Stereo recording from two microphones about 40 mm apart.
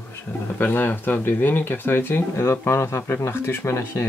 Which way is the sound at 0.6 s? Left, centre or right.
Left.